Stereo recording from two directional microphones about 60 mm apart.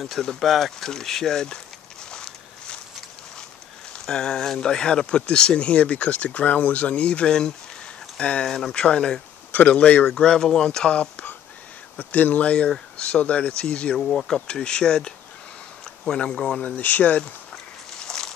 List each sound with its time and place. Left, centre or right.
0.0 s speech: centre
2.0 s a sound: centre
4.0 s speech: centre
8.5 s speech: centre
9.5 s speech: left
10.1 s speech: centre
13.9 s speech: centre
16.6 s speech: left
17.2 s a sound: centre